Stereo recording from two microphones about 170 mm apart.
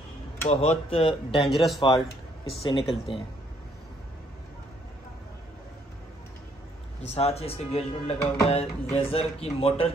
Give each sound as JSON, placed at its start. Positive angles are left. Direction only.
{"t": 0.5, "sound": "speech", "side_deg": 35}
{"t": 1.5, "sound": "speech", "side_deg": 0}
{"t": 1.8, "sound": "a man's voice", "side_deg": 30}
{"t": 7.0, "sound": "speech", "side_deg": 35}